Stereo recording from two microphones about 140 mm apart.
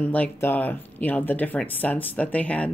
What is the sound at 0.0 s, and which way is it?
Speech, 10° left (ahead or behind).